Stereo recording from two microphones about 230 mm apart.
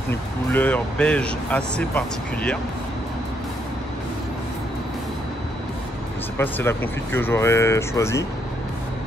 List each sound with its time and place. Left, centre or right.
0.1 s speech: centre
6.3 s speech: centre